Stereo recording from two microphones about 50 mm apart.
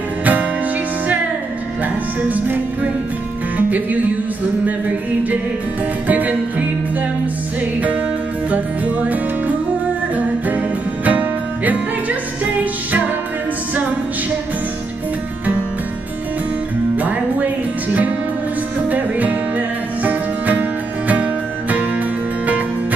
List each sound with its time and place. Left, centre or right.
0.2 s music: right
2.2 s music: right
8.5 s music: right
11.1 s music: right
16.9 s music: right
18.9 s music: right